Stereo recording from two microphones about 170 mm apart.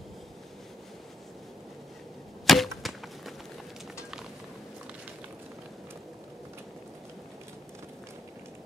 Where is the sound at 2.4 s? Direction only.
Centre (ahead or behind).